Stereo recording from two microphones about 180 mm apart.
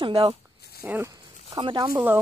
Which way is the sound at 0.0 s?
30° right (ahead or behind).